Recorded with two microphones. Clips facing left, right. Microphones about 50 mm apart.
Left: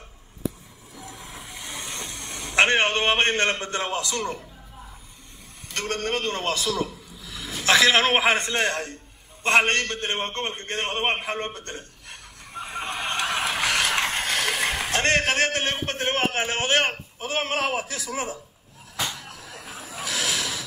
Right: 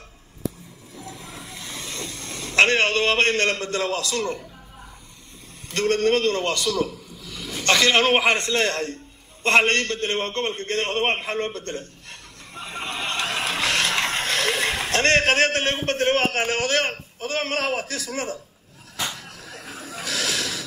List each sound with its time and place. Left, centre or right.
0.9 s vehicle: left
5.7 s speech: right
6.2 s a man's voice: centre
6.8 s a sound: centre
7.6 s a man's voice: centre; by 11.8 s left
13.0 s vehicle: left
14.0 s a sound: right
16.6 s a man's voice: left
19.1 s a sound: left